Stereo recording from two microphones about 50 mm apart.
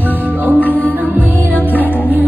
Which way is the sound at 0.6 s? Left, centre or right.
Left.